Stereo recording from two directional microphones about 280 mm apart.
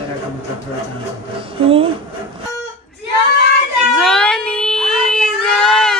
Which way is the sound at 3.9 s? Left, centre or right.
Centre.